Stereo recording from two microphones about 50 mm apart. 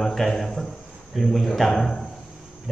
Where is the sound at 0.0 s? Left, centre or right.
Centre.